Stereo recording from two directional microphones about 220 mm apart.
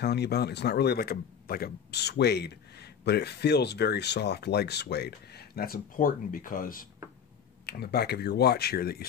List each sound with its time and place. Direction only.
0.0 s speech: 50° left (ahead or behind)